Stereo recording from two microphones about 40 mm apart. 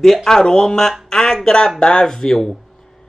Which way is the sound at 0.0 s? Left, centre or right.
Centre.